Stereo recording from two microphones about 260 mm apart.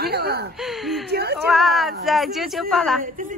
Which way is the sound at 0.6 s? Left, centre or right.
Centre.